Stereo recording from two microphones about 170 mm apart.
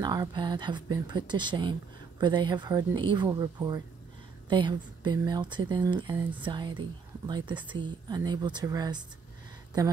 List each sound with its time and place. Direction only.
0.0 s speech: 25° right (ahead or behind)